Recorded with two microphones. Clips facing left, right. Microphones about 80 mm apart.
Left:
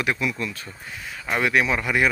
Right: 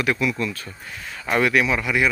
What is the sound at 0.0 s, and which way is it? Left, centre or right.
Speech, left.